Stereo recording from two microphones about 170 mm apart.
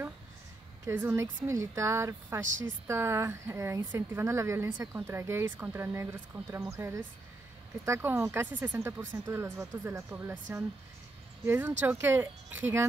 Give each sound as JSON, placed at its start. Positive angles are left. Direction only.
{"t": 0.8, "sound": "a woman's voice", "side_deg": -15}
{"t": 7.8, "sound": "a woman's voice", "side_deg": -15}